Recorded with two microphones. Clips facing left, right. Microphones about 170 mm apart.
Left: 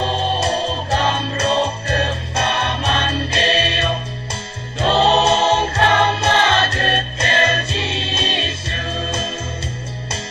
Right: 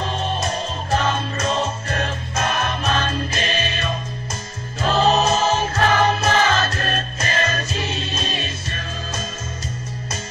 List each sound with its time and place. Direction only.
0.0 s music: 30° left (ahead or behind)